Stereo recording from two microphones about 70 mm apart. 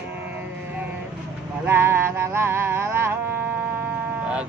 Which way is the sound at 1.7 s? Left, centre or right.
Right.